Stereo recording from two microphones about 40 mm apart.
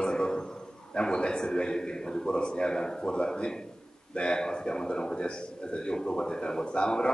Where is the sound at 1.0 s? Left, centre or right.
Left.